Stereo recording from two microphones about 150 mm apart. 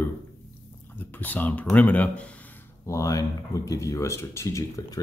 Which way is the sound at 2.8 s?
20° left (ahead or behind).